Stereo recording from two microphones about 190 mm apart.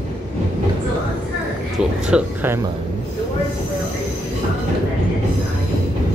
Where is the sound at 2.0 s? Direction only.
10° right (ahead or behind).